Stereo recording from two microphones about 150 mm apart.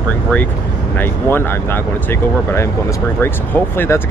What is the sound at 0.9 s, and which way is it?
Speech, 15° left (ahead or behind).